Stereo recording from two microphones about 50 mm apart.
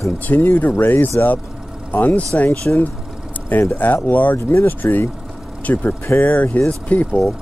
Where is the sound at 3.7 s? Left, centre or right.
Left.